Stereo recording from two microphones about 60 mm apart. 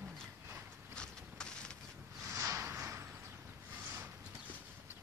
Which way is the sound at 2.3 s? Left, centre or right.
Right.